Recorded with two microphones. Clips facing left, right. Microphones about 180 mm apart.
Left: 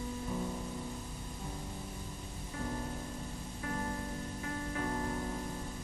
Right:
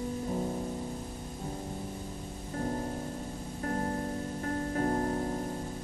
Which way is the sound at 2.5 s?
40° right (ahead or behind).